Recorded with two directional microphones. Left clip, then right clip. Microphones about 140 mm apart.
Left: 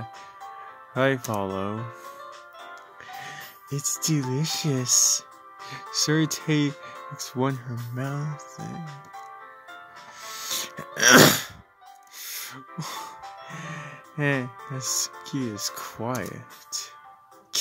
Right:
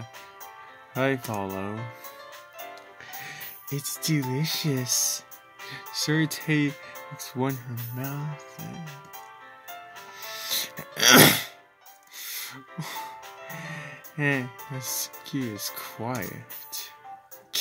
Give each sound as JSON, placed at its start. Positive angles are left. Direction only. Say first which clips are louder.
{"t": 0.9, "sound": "speech", "louder": "left 3 dB", "side_deg": 35}
{"t": 3.3, "sound": "speech", "louder": "left 1 dB", "side_deg": 35}
{"t": 10.2, "sound": "music", "louder": "right 1 dB", "side_deg": 35}
{"t": 16.1, "sound": "speech", "louder": "left 2 dB", "side_deg": 30}